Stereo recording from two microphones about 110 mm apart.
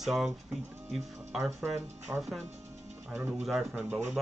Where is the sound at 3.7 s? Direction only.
15° right (ahead or behind).